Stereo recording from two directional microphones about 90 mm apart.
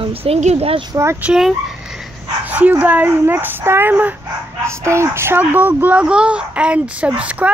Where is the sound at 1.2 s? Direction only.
5° right (ahead or behind).